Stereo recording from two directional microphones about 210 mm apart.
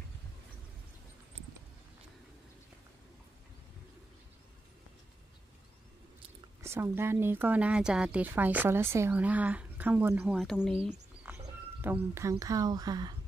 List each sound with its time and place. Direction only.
6.6 s speech: 10° right (ahead or behind)
10.3 s speech: centre (ahead or behind)
11.3 s frog: 5° right (ahead or behind)
11.8 s speech: 10° right (ahead or behind)